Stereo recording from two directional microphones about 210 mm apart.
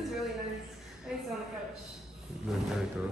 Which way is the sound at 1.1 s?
5° right (ahead or behind).